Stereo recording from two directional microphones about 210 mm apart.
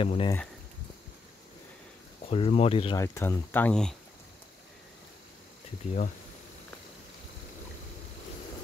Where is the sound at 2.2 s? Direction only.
25° left (ahead or behind).